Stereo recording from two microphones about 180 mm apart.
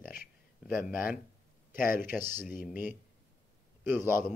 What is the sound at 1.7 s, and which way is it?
Speech, 50° left (ahead or behind).